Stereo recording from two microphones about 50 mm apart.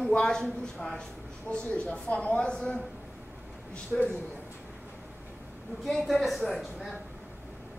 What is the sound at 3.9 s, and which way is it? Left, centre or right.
Speech, centre.